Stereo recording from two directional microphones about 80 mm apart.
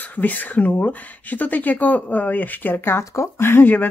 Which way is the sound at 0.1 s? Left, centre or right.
Left.